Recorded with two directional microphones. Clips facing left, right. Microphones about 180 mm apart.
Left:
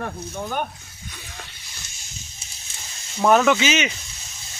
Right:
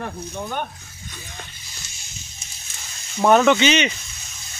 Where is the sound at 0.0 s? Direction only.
5° left (ahead or behind).